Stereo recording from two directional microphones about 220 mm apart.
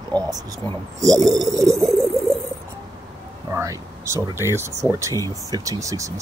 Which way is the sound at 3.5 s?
15° right (ahead or behind).